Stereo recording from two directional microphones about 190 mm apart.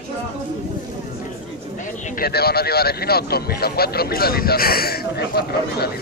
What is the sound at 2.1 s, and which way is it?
Speech, 55° left (ahead or behind).